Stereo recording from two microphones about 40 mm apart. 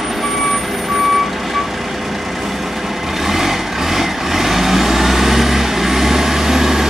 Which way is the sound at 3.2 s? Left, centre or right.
Centre.